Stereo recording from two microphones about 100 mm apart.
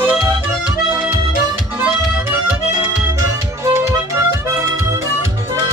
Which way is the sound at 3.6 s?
25° right (ahead or behind).